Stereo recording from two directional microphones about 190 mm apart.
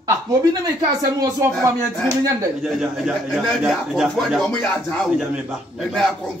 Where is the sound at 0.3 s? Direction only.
20° right (ahead or behind).